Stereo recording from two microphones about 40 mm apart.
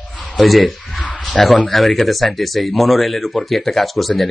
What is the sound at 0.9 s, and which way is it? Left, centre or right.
Speech, left.